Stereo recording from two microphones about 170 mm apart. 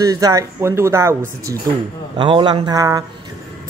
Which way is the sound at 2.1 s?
30° right (ahead or behind).